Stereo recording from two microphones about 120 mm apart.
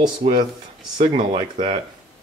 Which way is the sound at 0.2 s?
40° right (ahead or behind).